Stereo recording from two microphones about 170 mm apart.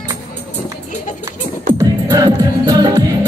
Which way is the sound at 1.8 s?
20° right (ahead or behind).